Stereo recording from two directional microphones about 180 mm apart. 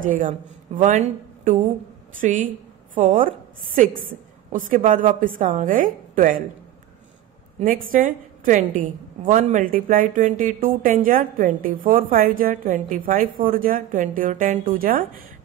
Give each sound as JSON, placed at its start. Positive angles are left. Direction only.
{"t": 0.0, "sound": "a woman's voice", "side_deg": -50}
{"t": 7.5, "sound": "a woman's voice", "side_deg": -50}